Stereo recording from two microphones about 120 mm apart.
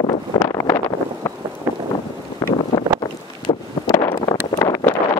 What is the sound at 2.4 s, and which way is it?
Wind noise, 25° left (ahead or behind).